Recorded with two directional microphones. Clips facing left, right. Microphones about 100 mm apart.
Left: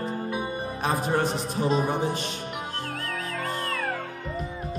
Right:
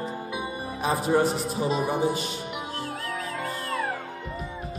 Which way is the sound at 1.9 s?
5° right (ahead or behind).